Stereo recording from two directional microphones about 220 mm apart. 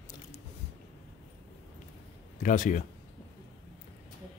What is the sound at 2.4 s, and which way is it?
Speech, 35° left (ahead or behind).